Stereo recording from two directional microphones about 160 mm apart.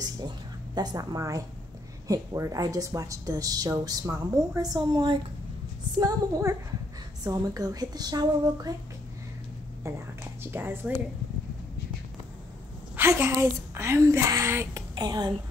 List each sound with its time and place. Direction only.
0.7 s a woman's voice: 25° right (ahead or behind)
9.8 s a woman's voice: 15° right (ahead or behind)
12.9 s a woman's voice: 15° right (ahead or behind)
15.0 s a woman's voice: 25° right (ahead or behind)